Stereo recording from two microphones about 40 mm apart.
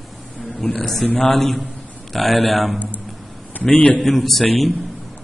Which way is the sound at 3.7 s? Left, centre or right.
Left.